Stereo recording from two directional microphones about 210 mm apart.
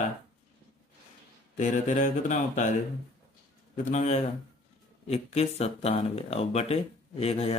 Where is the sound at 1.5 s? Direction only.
35° left (ahead or behind).